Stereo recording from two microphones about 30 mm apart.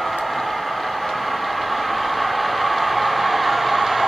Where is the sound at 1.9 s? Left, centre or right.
Centre.